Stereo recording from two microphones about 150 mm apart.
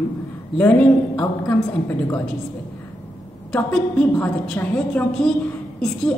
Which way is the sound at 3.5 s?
10° left (ahead or behind).